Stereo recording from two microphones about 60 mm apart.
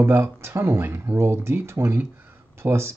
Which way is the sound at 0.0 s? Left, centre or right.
Right.